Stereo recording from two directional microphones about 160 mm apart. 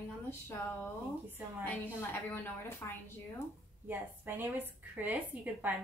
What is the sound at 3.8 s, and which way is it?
Speech, 10° right (ahead or behind).